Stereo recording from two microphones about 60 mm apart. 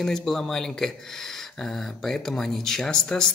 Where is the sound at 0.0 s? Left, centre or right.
Centre.